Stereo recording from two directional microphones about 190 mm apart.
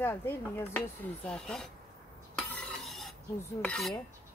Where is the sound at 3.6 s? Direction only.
5° left (ahead or behind).